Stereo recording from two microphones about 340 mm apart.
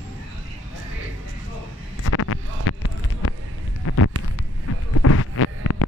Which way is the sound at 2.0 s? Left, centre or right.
Left.